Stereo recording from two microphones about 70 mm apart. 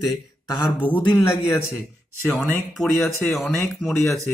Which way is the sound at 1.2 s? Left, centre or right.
Left.